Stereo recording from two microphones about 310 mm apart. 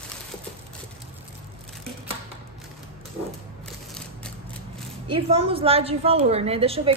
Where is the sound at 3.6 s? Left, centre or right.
Centre.